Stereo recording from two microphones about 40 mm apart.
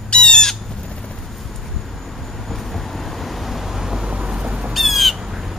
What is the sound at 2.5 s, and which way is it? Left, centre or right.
Vehicle, centre.